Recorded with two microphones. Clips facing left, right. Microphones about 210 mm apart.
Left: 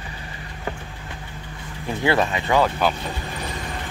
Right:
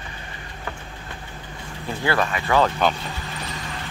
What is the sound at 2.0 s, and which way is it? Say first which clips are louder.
Speech: left 3 dB; 20° left (ahead or behind).